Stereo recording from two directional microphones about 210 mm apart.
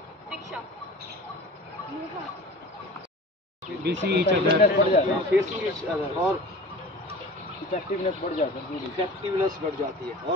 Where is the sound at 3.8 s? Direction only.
50° right (ahead or behind).